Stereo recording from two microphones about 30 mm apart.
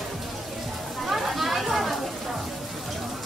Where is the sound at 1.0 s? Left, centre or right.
Centre.